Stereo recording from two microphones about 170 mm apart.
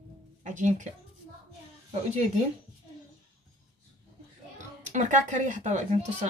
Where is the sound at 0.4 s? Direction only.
45° right (ahead or behind).